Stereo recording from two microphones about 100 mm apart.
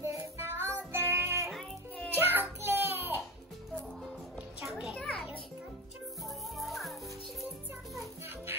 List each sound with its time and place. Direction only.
0.0 s music: 25° right (ahead or behind)
4.6 s children playing: 5° right (ahead or behind)
4.9 s children playing: 10° left (ahead or behind)
6.2 s music: centre (ahead or behind)